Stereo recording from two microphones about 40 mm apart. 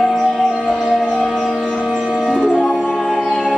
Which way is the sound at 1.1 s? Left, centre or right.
Centre.